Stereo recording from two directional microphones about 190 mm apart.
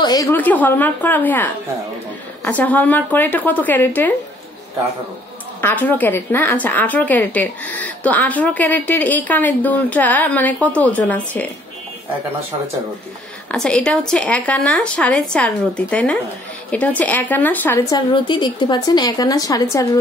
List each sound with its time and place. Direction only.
0.0 s a woman's voice: 20° left (ahead or behind)
5.6 s a woman's voice: 10° left (ahead or behind)
13.5 s speech: 5° left (ahead or behind)